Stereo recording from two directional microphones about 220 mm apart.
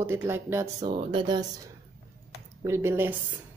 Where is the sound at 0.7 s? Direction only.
20° right (ahead or behind).